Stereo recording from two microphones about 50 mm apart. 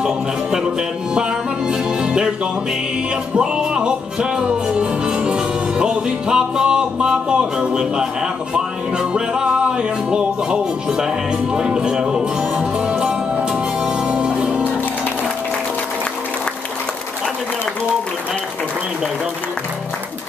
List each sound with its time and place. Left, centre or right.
0.0 s music: centre
1.7 s music: centre
3.3 s music: centre